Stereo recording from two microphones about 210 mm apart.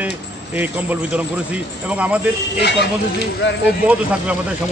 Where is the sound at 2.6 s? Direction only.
55° left (ahead or behind).